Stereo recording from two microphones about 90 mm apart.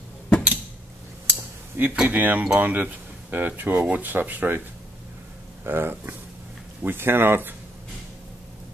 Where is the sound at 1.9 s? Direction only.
15° right (ahead or behind).